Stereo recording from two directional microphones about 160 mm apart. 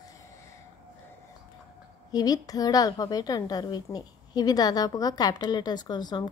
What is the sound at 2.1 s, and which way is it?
A woman's voice, 25° left (ahead or behind).